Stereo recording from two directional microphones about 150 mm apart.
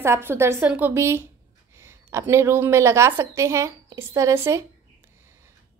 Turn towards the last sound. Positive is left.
turn(degrees=-20)  # may be behind; listen again after turning